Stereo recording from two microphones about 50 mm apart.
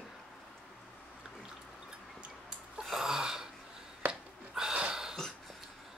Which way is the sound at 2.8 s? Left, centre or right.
Centre.